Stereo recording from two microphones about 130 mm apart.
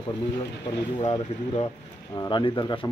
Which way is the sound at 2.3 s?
40° left (ahead or behind).